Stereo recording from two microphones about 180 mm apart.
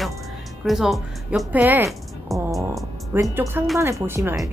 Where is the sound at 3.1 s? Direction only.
15° right (ahead or behind).